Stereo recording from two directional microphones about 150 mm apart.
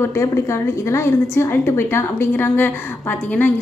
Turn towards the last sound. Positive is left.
turn(degrees=10)  # may be behind; listen again after turning